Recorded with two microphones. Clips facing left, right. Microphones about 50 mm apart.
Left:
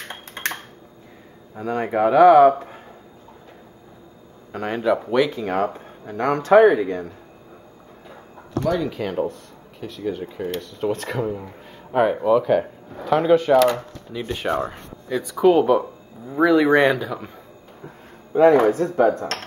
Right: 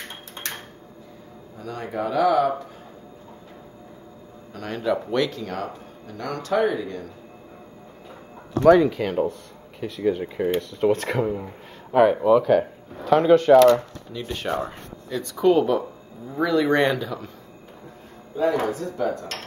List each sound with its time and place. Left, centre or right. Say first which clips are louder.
1.6 s speech: left 8 dB; left
4.5 s a man's voice: left 6 dB; left
4.8 s speech: left 3 dB; centre
5.4 s speech: left 8 dB; left
8.8 s speech: right 1 dB; centre
10.2 s speech: right 4 dB; centre
10.7 s speech: right 3 dB; centre
13.7 s speech: right 5 dB; centre
16.8 s speech: left 3 dB; centre
18.3 s speech: left 8 dB; left